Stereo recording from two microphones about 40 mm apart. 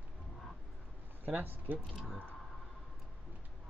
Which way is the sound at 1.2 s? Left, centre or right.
Right.